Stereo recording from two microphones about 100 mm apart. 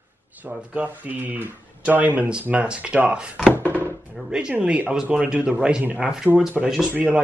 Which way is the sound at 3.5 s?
15° left (ahead or behind).